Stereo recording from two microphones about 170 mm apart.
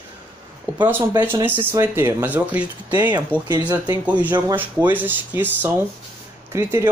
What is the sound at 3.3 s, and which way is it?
Speech, 10° left (ahead or behind).